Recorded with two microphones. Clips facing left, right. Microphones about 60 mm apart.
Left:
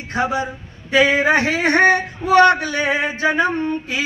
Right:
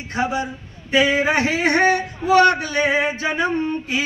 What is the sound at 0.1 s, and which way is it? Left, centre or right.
Speech, left.